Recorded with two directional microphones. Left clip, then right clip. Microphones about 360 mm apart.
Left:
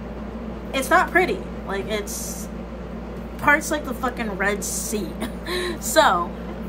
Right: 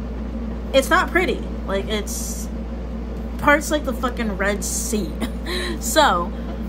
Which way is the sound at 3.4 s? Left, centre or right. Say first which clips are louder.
Right 2 dB; centre.